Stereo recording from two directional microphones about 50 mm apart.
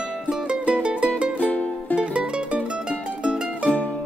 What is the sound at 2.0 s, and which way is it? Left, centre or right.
Music, right.